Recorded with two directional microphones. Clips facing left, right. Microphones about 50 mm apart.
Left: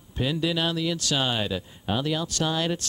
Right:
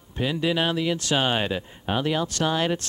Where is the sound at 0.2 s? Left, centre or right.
Right.